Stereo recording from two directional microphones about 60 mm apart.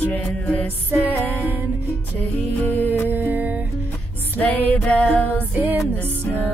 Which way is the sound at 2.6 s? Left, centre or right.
Left.